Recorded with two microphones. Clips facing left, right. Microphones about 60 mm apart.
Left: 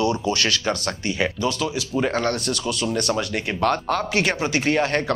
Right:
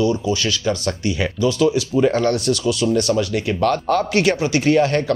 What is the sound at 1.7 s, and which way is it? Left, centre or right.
Speech, centre.